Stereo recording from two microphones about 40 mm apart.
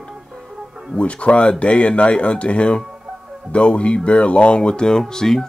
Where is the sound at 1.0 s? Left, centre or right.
Left.